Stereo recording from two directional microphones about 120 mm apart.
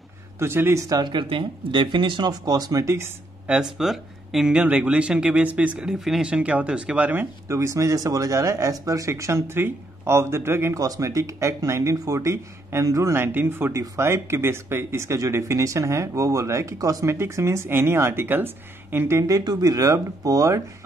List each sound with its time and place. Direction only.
0.4 s speech: 20° right (ahead or behind)
3.4 s speech: 5° right (ahead or behind); by 20.6 s 30° right (ahead or behind)